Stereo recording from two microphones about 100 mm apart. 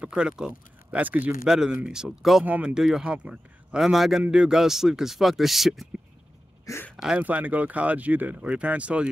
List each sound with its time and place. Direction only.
0.0 s speech: 10° right (ahead or behind)
1.4 s speech: 5° right (ahead or behind)
2.4 s speech: 15° right (ahead or behind)
2.7 s speech: 5° right (ahead or behind)
6.6 s speech: 30° left (ahead or behind)
7.0 s speech: 10° right (ahead or behind)